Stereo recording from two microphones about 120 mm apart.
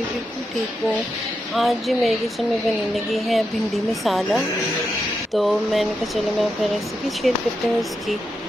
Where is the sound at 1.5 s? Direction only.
Centre (ahead or behind).